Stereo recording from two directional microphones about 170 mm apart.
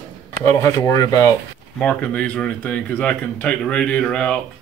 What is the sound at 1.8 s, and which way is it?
Speech, 10° left (ahead or behind).